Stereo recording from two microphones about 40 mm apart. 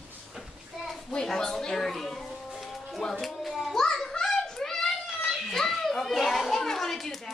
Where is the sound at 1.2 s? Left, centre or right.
Centre.